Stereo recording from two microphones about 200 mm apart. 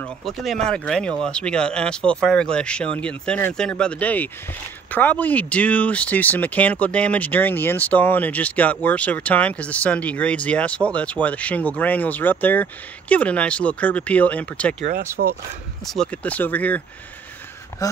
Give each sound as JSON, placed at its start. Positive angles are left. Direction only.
{"t": 0.0, "sound": "speech", "side_deg": 0}
{"t": 14.9, "sound": "speech", "side_deg": -45}
{"t": 15.8, "sound": "speech", "side_deg": 0}